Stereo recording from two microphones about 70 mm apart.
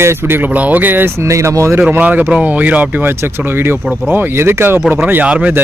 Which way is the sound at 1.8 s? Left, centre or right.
Right.